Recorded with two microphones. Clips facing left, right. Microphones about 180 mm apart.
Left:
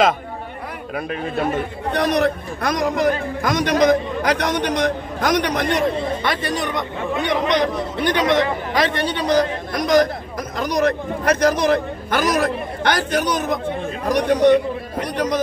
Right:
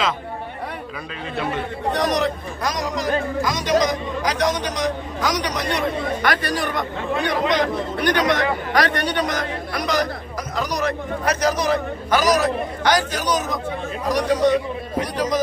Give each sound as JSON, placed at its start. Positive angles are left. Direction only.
{"t": 0.9, "sound": "speech", "side_deg": 50}
{"t": 6.2, "sound": "speech", "side_deg": 25}